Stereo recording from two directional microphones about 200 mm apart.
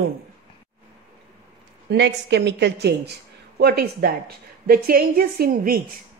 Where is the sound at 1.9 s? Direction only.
60° right (ahead or behind).